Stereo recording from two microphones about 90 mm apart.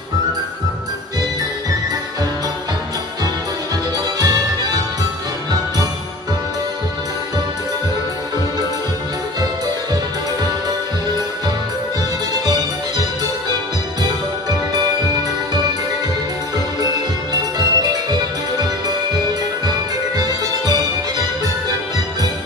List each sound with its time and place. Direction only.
4.2 s music: 50° right (ahead or behind)
17.3 s music: 45° right (ahead or behind)